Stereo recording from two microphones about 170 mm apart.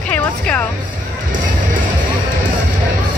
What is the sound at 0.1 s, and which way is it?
Music, 10° left (ahead or behind).